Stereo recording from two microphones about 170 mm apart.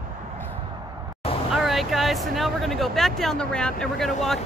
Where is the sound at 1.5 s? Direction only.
Centre (ahead or behind).